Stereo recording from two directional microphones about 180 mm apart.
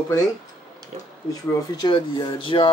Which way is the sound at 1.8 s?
25° left (ahead or behind).